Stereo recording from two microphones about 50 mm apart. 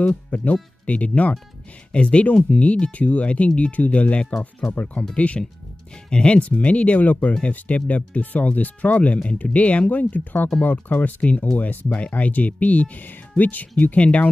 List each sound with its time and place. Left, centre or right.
0.0 s speech: left